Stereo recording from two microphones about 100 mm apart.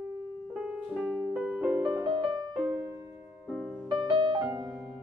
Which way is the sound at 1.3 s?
15° right (ahead or behind).